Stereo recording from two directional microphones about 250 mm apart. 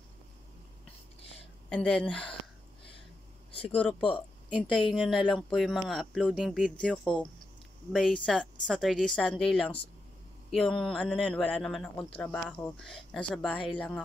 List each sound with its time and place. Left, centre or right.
1.7 s speech: centre
3.5 s a woman's voice: left
4.9 s speech: centre